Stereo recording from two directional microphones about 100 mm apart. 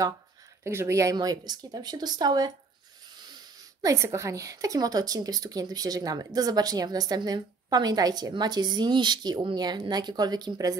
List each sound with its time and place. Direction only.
0.7 s speech: 25° right (ahead or behind)
1.1 s speech: 40° right (ahead or behind)
3.8 s a woman's voice: 30° right (ahead or behind)